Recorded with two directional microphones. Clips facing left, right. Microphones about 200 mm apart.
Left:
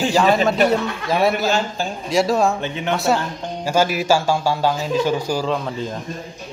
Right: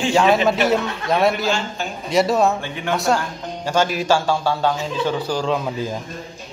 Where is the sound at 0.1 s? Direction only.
Centre (ahead or behind).